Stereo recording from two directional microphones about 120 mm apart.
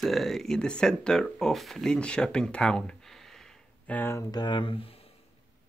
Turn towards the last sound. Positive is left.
turn(degrees=50)  # may be behind; listen again after turning